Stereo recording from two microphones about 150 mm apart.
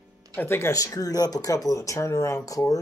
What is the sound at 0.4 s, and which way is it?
Speech, 15° left (ahead or behind).